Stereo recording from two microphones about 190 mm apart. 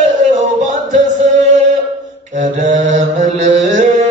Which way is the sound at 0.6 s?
40° right (ahead or behind).